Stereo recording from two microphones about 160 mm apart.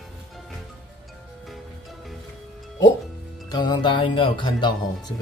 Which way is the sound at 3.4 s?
25° left (ahead or behind).